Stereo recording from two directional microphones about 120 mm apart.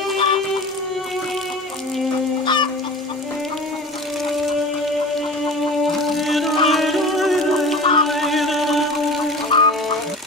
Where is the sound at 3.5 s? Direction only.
Centre (ahead or behind).